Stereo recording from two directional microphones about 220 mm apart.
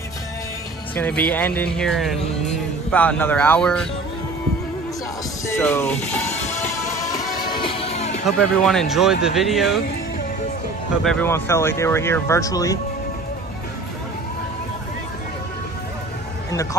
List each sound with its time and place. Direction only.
0.9 s speech: 5° left (ahead or behind)
5.6 s speech: 5° left (ahead or behind)
7.6 s music: 25° left (ahead or behind)
8.4 s speech: centre (ahead or behind)
11.1 s speech: 10° left (ahead or behind)